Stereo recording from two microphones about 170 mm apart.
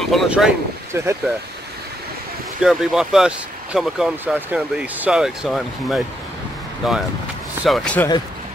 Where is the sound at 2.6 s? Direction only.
5° right (ahead or behind).